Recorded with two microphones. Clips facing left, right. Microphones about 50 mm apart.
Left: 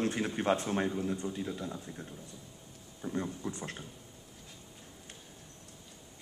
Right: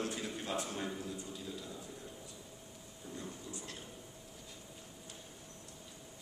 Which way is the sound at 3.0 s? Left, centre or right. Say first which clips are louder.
Left 11 dB; left.